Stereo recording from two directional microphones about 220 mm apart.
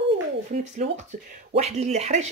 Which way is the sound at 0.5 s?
30° right (ahead or behind).